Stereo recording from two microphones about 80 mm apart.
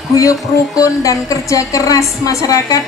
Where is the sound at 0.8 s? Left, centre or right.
Left.